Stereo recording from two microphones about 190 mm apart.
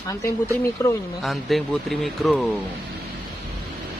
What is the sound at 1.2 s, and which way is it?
Speech, centre (ahead or behind).